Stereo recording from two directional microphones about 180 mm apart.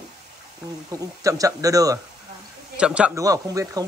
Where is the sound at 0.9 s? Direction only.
20° right (ahead or behind).